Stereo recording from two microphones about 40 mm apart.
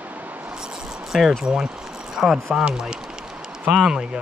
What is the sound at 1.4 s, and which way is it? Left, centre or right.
Speech, centre.